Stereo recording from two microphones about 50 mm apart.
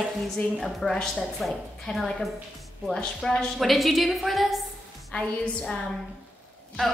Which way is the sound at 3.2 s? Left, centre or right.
Centre.